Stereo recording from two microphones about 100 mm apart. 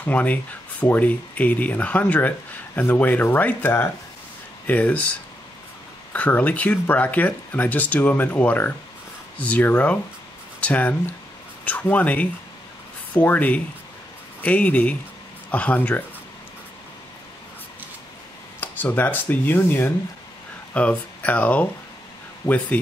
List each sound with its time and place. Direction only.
0.0 s speech: 15° left (ahead or behind)
6.1 s speech: 15° left (ahead or behind)
18.6 s speech: 20° left (ahead or behind)
22.4 s speech: 45° left (ahead or behind)